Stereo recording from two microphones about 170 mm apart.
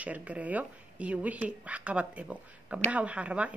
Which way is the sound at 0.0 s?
10° right (ahead or behind).